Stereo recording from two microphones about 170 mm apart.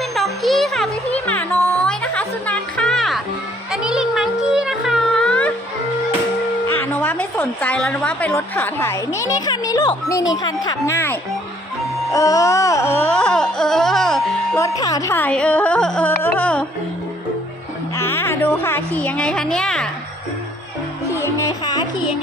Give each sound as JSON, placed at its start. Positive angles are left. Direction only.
{"t": 0.1, "sound": "music", "side_deg": 0}
{"t": 6.7, "sound": "music", "side_deg": 10}
{"t": 8.3, "sound": "speech", "side_deg": 15}
{"t": 12.1, "sound": "music", "side_deg": 20}
{"t": 14.6, "sound": "speech", "side_deg": 20}
{"t": 17.9, "sound": "a woman's voice", "side_deg": 15}
{"t": 21.1, "sound": "music", "side_deg": 15}